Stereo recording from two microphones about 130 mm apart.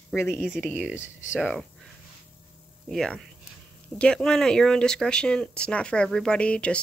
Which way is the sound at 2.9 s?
5° left (ahead or behind).